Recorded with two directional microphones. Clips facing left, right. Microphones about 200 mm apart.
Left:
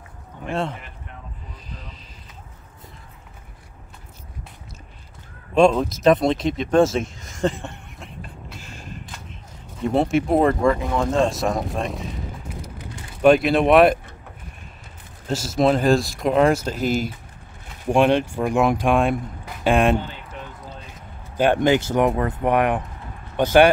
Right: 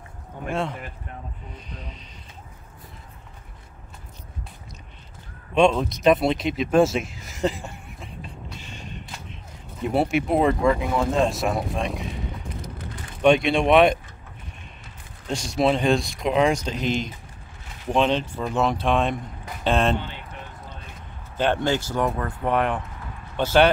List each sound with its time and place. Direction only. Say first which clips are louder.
0.5 s speech: left 1 dB; centre (ahead or behind)
1.5 s music: right 1 dB; centre (ahead or behind)
5.5 s a sound: left 3 dB; centre (ahead or behind)
9.8 s speech: left 3 dB; centre (ahead or behind)
12.6 s vehicle: even; 5° left (ahead or behind)
15.2 s speech: left 3 dB; 5° left (ahead or behind)
21.4 s speech: left 5 dB; 15° left (ahead or behind)